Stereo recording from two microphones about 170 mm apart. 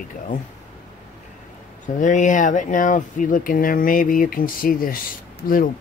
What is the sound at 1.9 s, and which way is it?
Speech, 50° left (ahead or behind).